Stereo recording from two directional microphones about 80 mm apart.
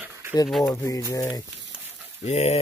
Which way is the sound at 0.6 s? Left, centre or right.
Left.